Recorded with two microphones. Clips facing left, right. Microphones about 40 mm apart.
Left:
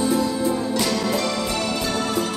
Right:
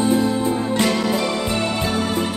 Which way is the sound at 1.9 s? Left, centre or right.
Centre.